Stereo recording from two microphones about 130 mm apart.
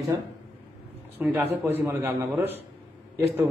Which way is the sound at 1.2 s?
15° right (ahead or behind).